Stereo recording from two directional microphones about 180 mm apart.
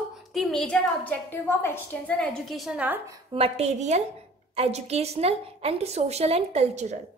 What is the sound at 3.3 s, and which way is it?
A woman's voice, 35° right (ahead or behind).